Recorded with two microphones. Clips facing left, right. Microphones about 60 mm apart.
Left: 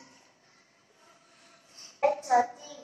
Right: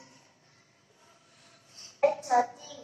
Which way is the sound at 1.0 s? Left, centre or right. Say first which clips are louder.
Left 2 dB; left.